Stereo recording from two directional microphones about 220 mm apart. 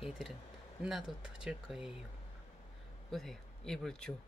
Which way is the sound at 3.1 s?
Centre (ahead or behind).